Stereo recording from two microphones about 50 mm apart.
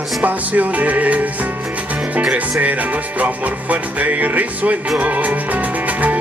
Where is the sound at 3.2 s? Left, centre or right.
Right.